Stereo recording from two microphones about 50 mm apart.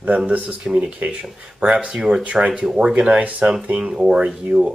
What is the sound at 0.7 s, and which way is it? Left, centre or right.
Speech, centre.